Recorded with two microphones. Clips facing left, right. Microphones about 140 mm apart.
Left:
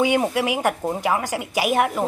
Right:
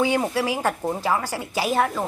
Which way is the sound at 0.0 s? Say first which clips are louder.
Left 2 dB; 20° left (ahead or behind).